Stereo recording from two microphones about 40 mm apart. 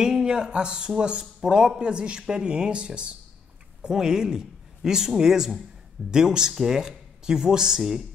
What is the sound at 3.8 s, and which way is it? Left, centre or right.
Speech, centre.